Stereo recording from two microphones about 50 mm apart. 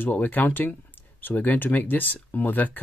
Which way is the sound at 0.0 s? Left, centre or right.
Left.